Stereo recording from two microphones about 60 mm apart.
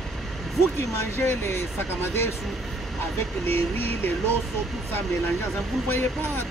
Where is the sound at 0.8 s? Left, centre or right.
Left.